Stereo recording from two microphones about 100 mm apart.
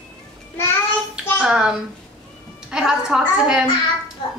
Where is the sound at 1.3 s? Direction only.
5° right (ahead or behind).